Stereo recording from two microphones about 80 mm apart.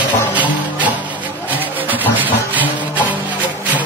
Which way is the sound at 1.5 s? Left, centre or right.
Right.